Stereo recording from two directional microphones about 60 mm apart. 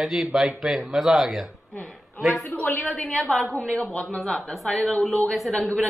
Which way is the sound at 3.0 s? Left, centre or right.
Centre.